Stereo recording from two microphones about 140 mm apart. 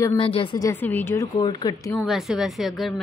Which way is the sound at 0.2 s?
40° left (ahead or behind).